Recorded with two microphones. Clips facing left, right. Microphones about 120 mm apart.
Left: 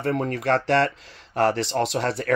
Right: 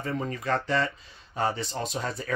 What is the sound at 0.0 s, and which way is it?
Speech, 70° left (ahead or behind).